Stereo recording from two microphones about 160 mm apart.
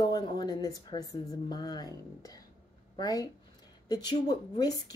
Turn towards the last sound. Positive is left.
turn(degrees=25)  # may be behind; listen again after turning